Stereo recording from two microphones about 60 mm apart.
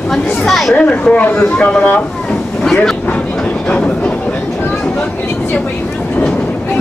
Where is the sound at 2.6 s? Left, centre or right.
Centre.